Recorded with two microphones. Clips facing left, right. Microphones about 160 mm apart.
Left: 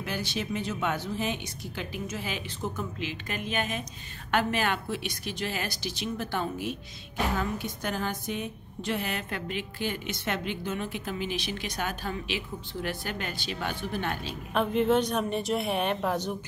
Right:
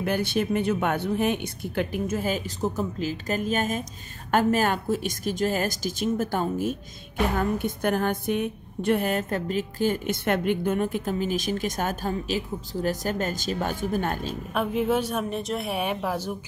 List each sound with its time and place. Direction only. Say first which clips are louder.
0.0 s a woman's voice: right 8 dB; 55° right (ahead or behind)
14.5 s a woman's voice: even; 5° right (ahead or behind)